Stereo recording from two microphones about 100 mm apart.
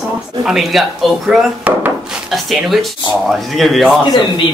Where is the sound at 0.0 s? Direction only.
5° right (ahead or behind).